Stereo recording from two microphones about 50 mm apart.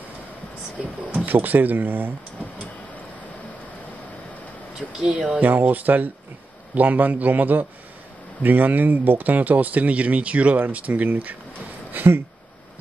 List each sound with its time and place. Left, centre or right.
1.1 s speech: right
5.0 s speech: centre
5.4 s speech: right
11.9 s a sound: right